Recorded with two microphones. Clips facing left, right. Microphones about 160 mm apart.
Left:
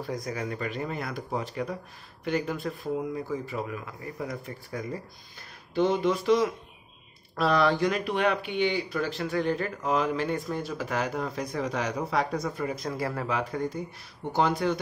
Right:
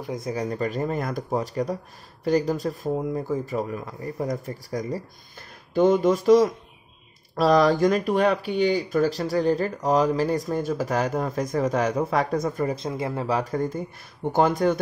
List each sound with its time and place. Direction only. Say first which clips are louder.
0.0 s speech: right 4 dB; 25° right (ahead or behind); by 12.7 s 45° right (ahead or behind)
12.7 s speech: right 3 dB; 25° right (ahead or behind)
13.3 s speech: right 5 dB; 40° right (ahead or behind)